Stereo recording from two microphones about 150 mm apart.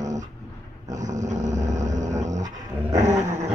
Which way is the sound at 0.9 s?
55° right (ahead or behind).